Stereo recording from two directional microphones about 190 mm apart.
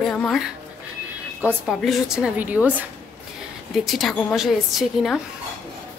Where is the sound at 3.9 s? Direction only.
Centre (ahead or behind).